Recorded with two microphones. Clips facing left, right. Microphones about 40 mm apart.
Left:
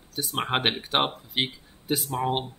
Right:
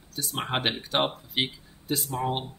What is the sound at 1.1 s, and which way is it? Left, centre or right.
Speech, centre.